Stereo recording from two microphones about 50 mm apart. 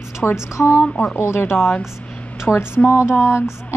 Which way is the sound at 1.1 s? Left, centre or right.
Left.